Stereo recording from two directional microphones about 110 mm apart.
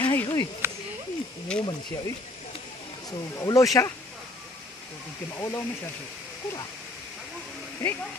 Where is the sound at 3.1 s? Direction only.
30° left (ahead or behind).